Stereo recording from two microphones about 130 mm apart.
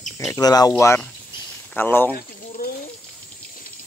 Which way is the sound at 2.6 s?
90° left.